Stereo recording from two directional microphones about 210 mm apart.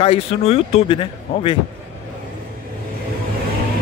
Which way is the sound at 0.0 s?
30° left (ahead or behind).